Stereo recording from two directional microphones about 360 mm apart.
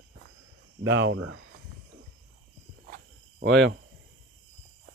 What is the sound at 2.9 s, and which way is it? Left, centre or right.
Cricket, right.